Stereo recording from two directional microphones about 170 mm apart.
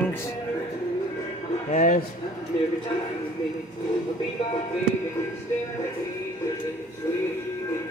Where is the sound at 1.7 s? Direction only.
45° left (ahead or behind).